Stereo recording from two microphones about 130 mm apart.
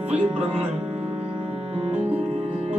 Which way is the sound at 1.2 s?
40° right (ahead or behind).